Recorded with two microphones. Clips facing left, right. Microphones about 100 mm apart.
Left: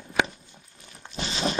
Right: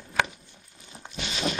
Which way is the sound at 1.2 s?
30° left (ahead or behind).